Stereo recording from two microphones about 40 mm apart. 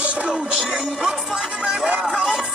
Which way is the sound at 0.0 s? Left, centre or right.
Right.